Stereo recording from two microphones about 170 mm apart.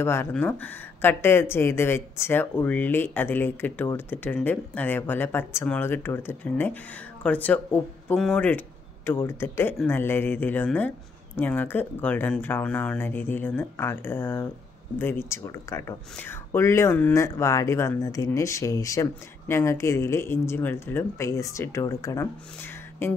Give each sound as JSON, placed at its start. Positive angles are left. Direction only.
{"t": 0.0, "sound": "speech", "side_deg": 15}